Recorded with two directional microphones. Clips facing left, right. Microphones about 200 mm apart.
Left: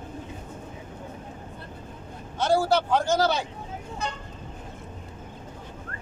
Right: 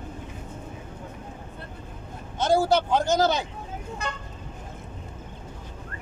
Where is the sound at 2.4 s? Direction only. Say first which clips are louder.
Right 1 dB; 20° right (ahead or behind).